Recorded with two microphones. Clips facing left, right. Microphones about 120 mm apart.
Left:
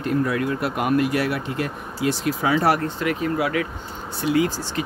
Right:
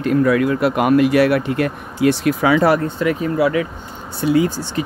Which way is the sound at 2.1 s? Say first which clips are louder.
Right 6 dB; 80° right.